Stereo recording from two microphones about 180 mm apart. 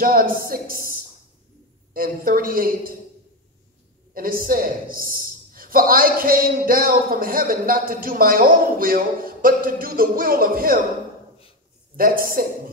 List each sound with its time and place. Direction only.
0.0 s a man's voice: 55° right (ahead or behind)
4.1 s a man's voice: 55° right (ahead or behind)
12.0 s a man's voice: 55° right (ahead or behind)